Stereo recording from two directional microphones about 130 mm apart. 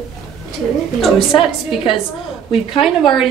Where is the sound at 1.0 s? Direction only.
Centre (ahead or behind).